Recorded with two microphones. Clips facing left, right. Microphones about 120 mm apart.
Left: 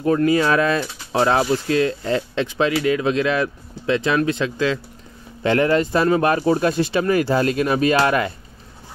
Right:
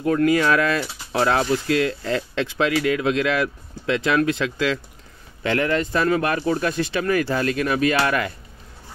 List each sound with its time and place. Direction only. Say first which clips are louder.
0.0 s speech: left 1 dB; 25° left (ahead or behind)
5.4 s speech: left 4 dB; 35° left (ahead or behind)